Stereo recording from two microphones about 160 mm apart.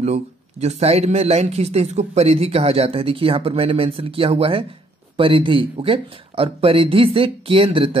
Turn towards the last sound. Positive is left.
turn(degrees=-35)  # may be behind; listen again after turning